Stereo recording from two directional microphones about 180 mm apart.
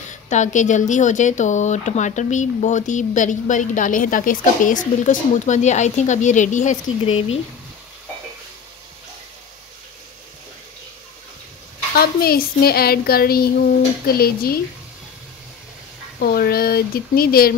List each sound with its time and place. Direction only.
0.1 s speech: 45° left (ahead or behind)
12.0 s a woman's voice: 60° left (ahead or behind)
16.2 s a woman's voice: 55° left (ahead or behind)